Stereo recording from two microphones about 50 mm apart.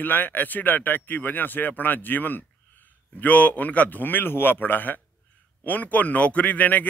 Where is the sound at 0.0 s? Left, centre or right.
Left.